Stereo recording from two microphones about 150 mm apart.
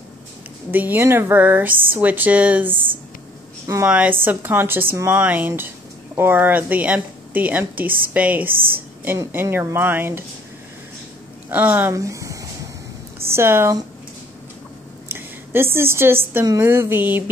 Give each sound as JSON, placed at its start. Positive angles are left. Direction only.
{"t": 0.7, "sound": "speech", "side_deg": -15}
{"t": 11.5, "sound": "speech", "side_deg": -10}
{"t": 15.1, "sound": "a woman's voice", "side_deg": -15}